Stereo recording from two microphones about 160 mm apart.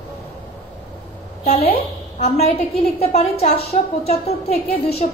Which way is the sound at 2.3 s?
40° left (ahead or behind).